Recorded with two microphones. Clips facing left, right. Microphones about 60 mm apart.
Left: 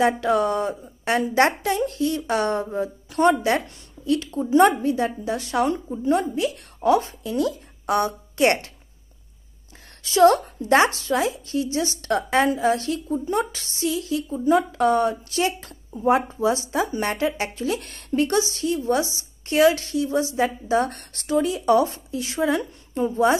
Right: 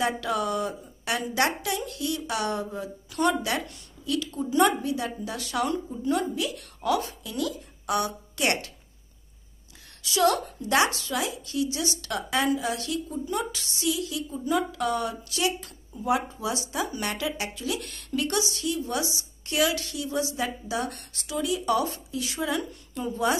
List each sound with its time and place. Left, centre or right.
0.0 s a woman's voice: left
10.0 s a woman's voice: left